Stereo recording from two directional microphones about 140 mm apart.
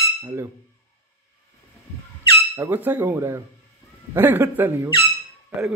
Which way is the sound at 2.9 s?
15° right (ahead or behind).